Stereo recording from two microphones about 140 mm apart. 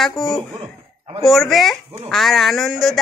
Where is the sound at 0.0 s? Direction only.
Centre (ahead or behind).